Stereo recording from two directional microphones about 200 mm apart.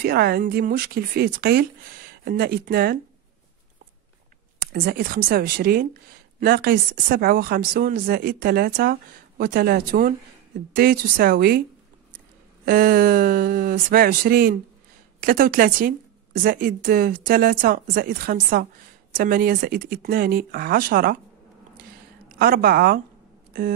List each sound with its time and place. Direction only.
0.0 s speech: 50° right (ahead or behind)
4.6 s speech: 45° right (ahead or behind)
12.6 s speech: 45° right (ahead or behind)
22.4 s speech: 45° right (ahead or behind)